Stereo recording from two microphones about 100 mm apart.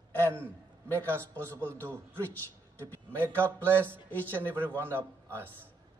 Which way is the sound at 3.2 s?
20° right (ahead or behind).